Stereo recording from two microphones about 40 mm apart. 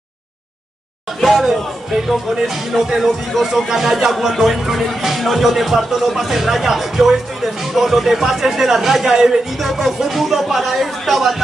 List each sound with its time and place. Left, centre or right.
1.2 s speech: centre